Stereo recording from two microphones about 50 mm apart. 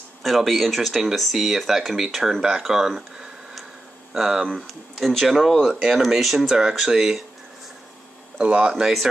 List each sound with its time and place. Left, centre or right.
0.2 s speech: centre
6.4 s speech: centre
8.4 s speech: right